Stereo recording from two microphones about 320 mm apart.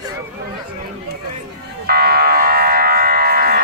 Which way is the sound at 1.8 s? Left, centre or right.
Right.